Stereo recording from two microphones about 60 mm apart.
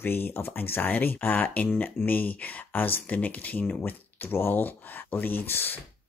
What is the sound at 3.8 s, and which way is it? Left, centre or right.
Speech, left.